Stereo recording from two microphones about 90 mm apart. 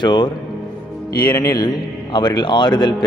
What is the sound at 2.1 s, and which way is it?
Speech, 55° left (ahead or behind).